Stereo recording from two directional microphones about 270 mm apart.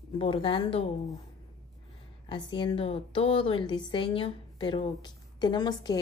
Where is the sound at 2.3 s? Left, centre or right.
Centre.